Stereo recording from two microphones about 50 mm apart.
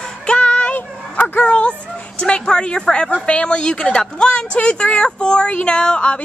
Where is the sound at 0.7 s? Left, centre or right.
Left.